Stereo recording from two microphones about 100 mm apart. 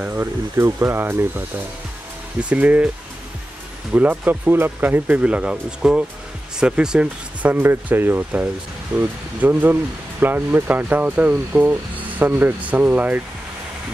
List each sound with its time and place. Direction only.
0.0 s speech: 20° right (ahead or behind)
2.5 s speech: 15° right (ahead or behind)
3.9 s speech: 15° right (ahead or behind)